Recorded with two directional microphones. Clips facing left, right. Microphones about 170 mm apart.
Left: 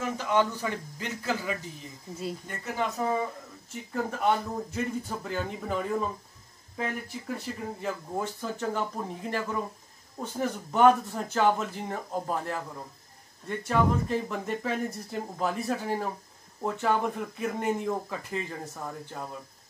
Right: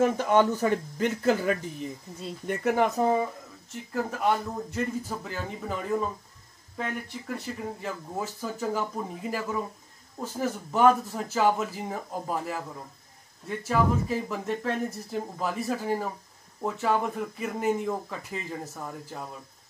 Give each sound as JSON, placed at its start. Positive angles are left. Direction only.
{"t": 0.0, "sound": "speech", "side_deg": -50}
{"t": 3.7, "sound": "speech", "side_deg": 0}